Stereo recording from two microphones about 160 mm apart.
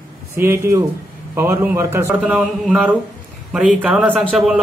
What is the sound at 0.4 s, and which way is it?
A man's voice, 15° right (ahead or behind).